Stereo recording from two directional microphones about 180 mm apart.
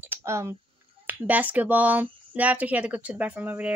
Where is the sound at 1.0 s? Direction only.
10° right (ahead or behind).